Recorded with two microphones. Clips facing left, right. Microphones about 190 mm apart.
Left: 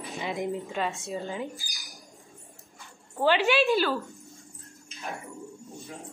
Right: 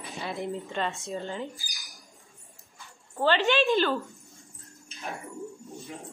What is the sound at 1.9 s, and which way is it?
Squawk, 15° left (ahead or behind).